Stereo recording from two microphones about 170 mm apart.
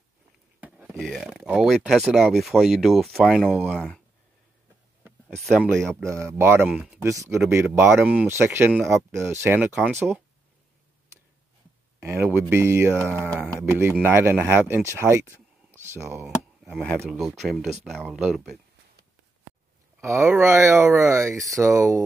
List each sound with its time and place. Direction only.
0.6 s speech: 5° right (ahead or behind)
5.4 s speech: centre (ahead or behind)
6.0 s speech: 15° right (ahead or behind)
12.0 s speech: 15° right (ahead or behind)
16.7 s speech: 5° left (ahead or behind)
20.0 s speech: 15° right (ahead or behind)